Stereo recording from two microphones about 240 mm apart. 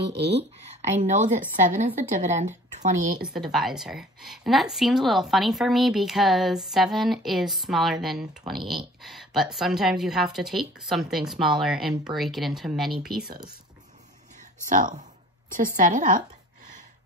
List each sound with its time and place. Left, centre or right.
0.0 s speech: right
1.0 s a woman's voice: right
3.2 s a woman's voice: centre
14.7 s a woman's voice: right